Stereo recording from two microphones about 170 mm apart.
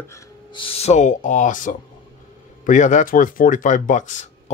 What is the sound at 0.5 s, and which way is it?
Speech, 30° left (ahead or behind).